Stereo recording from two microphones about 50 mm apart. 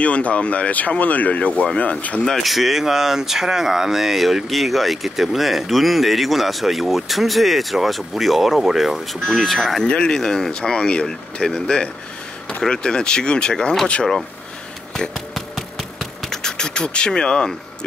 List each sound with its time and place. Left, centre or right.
0.0 s speech: left
2.4 s speech: centre
9.8 s speech: centre
15.3 s engine: centre